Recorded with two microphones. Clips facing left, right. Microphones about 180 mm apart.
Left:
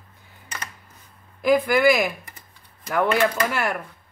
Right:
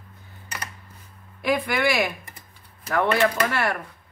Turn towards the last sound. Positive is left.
turn(degrees=5)  # may be behind; listen again after turning